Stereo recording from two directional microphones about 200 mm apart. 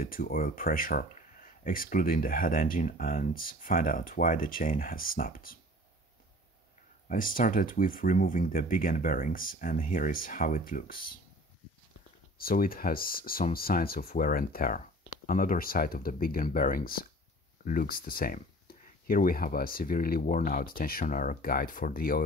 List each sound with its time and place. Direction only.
0.0 s speech: 45° left (ahead or behind)
7.1 s speech: 45° left (ahead or behind)
12.4 s speech: 45° left (ahead or behind)